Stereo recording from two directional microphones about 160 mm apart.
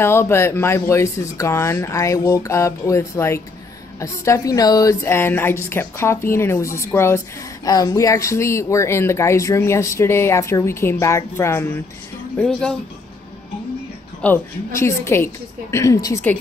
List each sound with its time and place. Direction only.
0.0 s speech: 15° left (ahead or behind)
14.2 s speech: 15° left (ahead or behind)